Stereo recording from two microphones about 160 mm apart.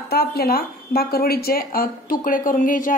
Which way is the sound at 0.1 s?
75° left (ahead or behind).